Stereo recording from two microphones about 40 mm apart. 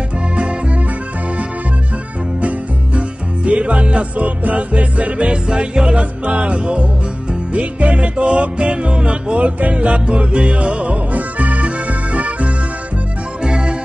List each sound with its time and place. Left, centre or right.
2.4 s music: right
13.4 s music: right